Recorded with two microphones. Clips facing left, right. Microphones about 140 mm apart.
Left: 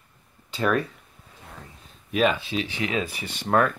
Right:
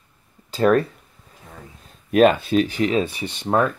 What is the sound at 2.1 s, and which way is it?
Speech, 50° right (ahead or behind).